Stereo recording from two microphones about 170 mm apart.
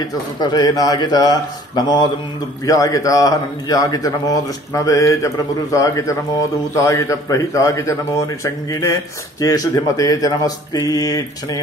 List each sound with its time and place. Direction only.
0.4 s a man's voice: 25° left (ahead or behind)